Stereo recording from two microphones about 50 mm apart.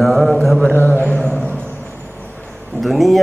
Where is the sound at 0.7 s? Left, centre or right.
Left.